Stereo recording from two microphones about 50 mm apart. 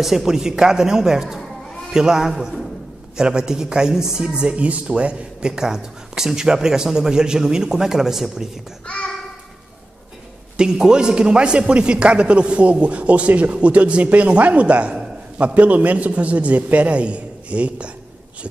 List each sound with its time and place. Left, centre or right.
0.0 s a man's voice: centre
5.6 s a man's voice: centre
8.8 s a child's voice: left
10.6 s a man's voice: centre